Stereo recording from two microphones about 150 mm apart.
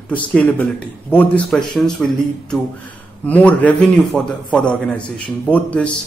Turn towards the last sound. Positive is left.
turn(degrees=10)  # may be behind; listen again after turning